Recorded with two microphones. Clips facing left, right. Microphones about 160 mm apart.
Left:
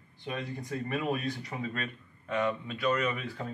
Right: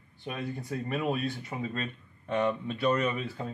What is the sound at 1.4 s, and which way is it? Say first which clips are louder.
Speech: right 2 dB; 25° right (ahead or behind).